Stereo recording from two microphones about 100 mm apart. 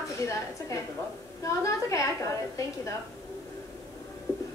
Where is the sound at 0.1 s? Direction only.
30° left (ahead or behind).